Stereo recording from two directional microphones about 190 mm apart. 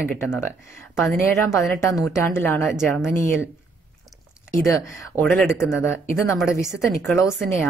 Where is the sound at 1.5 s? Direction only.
15° left (ahead or behind).